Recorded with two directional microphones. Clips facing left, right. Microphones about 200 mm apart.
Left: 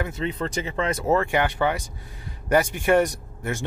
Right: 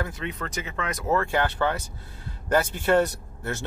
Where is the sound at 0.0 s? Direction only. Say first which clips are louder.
Left 4 dB; 30° left (ahead or behind).